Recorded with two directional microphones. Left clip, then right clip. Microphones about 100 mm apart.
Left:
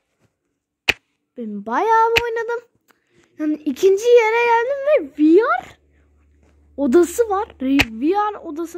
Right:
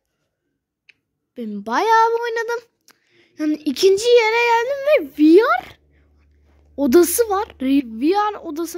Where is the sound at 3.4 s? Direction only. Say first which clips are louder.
Even; 25° right (ahead or behind).